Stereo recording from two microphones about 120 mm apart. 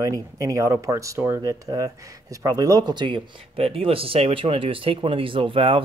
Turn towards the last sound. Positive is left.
turn(degrees=-50)  # may be behind; listen again after turning